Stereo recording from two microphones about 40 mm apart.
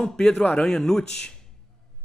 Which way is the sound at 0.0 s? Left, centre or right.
Centre.